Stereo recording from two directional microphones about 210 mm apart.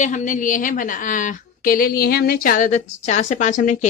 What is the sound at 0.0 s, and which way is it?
A woman's voice, 35° left (ahead or behind).